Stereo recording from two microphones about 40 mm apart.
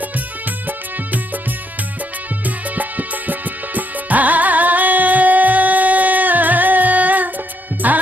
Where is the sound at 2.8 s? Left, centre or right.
Right.